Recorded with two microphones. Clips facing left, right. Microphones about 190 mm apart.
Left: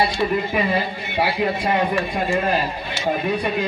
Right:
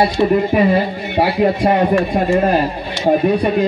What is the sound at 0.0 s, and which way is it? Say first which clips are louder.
A man's voice: right 7 dB; 45° right (ahead or behind).